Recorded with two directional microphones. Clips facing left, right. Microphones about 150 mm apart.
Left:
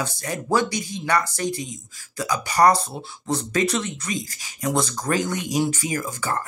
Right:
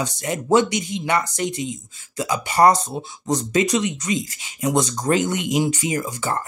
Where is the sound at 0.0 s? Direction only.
20° right (ahead or behind).